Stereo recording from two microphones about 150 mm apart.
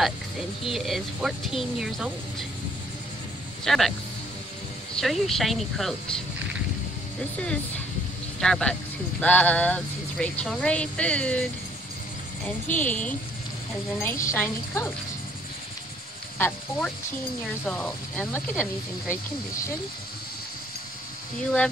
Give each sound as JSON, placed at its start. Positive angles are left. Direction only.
{"t": 0.7, "sound": "speech", "side_deg": 0}
{"t": 3.6, "sound": "speech", "side_deg": 0}
{"t": 5.0, "sound": "speech", "side_deg": 0}
{"t": 8.4, "sound": "speech", "side_deg": 5}
{"t": 12.4, "sound": "a woman's voice", "side_deg": 10}
{"t": 16.3, "sound": "speech", "side_deg": 10}